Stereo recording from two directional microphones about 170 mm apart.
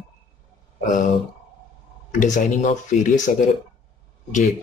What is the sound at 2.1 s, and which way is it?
Speech, 45° left (ahead or behind).